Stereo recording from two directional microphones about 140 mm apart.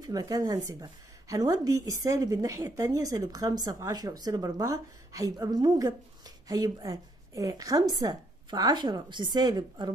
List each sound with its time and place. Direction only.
0.0 s a woman's voice: 25° right (ahead or behind)